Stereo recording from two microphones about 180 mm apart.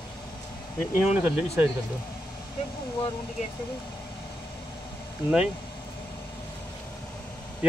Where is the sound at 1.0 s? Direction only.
10° right (ahead or behind).